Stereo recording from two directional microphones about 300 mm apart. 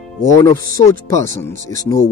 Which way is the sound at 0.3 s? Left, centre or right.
Centre.